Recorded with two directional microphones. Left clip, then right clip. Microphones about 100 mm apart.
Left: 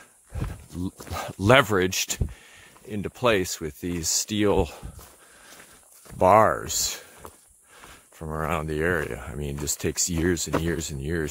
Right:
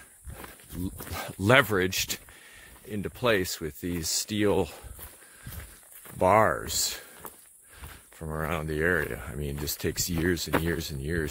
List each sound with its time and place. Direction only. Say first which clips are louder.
1.1 s speech: left 3 dB; 35° left (ahead or behind)
6.1 s speech: left 4 dB; 25° left (ahead or behind)
8.2 s speech: left 3 dB; 15° left (ahead or behind)
8.5 s speech: left 2 dB; 30° left (ahead or behind)